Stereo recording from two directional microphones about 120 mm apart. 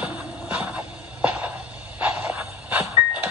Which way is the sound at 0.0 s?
10° right (ahead or behind).